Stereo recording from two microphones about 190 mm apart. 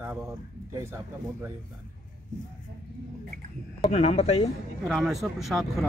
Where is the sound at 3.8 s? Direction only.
35° left (ahead or behind).